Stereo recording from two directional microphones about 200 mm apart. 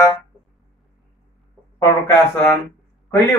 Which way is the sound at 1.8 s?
10° left (ahead or behind).